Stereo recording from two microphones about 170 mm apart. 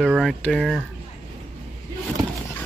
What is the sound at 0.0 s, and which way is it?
Speech, centre (ahead or behind).